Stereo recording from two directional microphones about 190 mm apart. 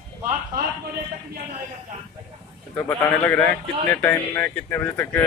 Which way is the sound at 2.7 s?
10° left (ahead or behind).